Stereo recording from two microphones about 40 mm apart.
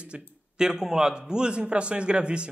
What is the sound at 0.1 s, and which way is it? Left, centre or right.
Speech, right.